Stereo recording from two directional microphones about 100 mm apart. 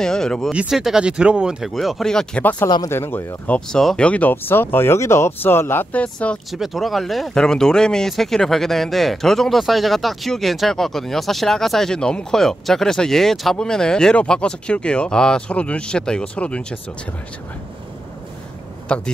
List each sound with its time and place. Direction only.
0.0 s speech: 5° left (ahead or behind)
0.5 s speech: 5° right (ahead or behind)
2.9 s speech: 25° left (ahead or behind)
3.4 s speech: 15° left (ahead or behind)
6.1 s speech: 10° left (ahead or behind)
6.5 s speech: centre (ahead or behind)
18.9 s speech: 10° left (ahead or behind)